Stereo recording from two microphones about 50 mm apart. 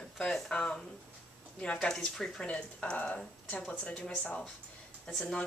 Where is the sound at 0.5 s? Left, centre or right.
Centre.